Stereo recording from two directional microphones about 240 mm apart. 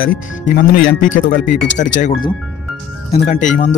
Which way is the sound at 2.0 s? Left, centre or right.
Left.